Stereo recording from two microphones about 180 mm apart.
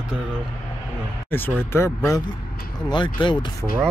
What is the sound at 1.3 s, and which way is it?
Speech, 10° left (ahead or behind).